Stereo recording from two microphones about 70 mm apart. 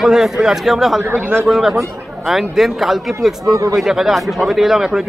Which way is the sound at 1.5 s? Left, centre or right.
Centre.